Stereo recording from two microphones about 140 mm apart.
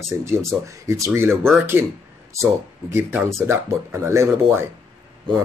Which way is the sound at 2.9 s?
15° right (ahead or behind).